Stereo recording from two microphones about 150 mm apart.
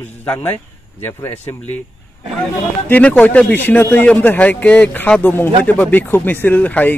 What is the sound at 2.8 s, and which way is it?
A man's voice, 10° left (ahead or behind).